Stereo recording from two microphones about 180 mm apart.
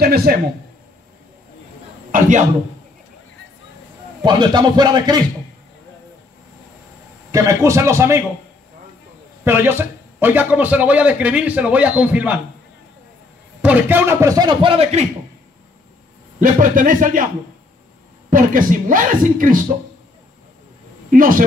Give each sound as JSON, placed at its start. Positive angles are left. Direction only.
{"t": 0.0, "sound": "speech", "side_deg": -60}
{"t": 2.1, "sound": "a man's voice", "side_deg": -45}
{"t": 4.2, "sound": "speech", "side_deg": -25}
{"t": 7.2, "sound": "a man's voice", "side_deg": -15}
{"t": 9.4, "sound": "a man's voice", "side_deg": -10}
{"t": 13.6, "sound": "speech", "side_deg": -10}
{"t": 16.3, "sound": "speech", "side_deg": -45}
{"t": 18.3, "sound": "speech", "side_deg": -50}
{"t": 21.1, "sound": "speech", "side_deg": -50}